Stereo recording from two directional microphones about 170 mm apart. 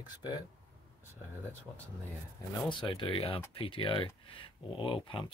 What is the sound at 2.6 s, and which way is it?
Speech, 30° left (ahead or behind).